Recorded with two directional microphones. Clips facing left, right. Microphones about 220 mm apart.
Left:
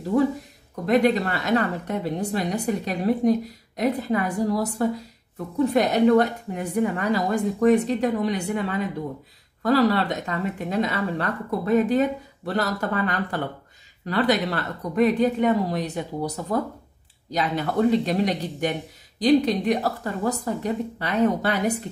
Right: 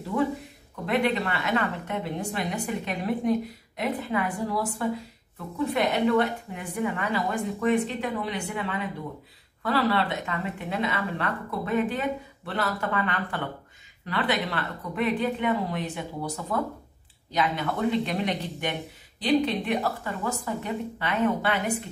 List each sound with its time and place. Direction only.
0.8 s speech: 40° left (ahead or behind)